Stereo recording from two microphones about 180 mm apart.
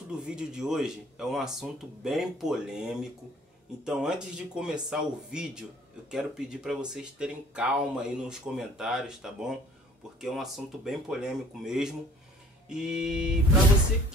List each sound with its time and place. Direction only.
0.1 s speech: 5° right (ahead or behind)